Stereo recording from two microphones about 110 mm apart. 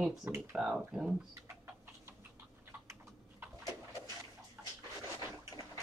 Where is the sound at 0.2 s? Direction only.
25° right (ahead or behind).